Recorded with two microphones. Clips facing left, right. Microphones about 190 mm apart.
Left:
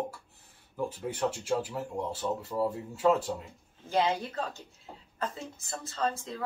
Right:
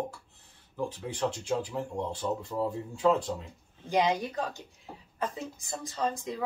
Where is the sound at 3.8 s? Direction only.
15° right (ahead or behind).